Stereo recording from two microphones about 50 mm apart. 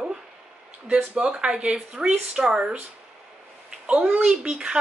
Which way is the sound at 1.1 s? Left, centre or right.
Centre.